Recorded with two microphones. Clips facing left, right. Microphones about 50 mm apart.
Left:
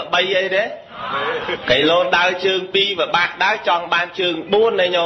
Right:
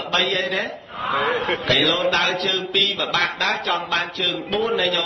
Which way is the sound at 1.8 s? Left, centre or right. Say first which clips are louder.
Left 8 dB; left.